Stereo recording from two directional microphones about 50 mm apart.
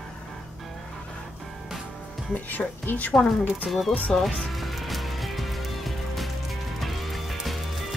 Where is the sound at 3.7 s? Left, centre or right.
Centre.